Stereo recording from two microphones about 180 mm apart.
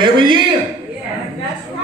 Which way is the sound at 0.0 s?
25° right (ahead or behind).